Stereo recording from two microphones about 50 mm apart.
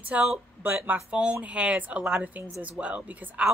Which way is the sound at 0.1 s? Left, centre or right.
Right.